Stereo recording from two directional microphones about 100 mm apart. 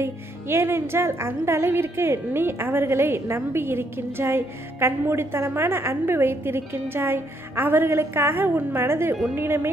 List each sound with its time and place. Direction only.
0.0 s speech: 25° right (ahead or behind)